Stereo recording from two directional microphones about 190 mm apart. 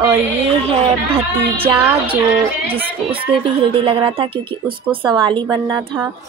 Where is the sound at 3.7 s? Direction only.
30° right (ahead or behind).